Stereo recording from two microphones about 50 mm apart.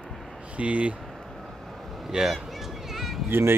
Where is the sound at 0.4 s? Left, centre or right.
Right.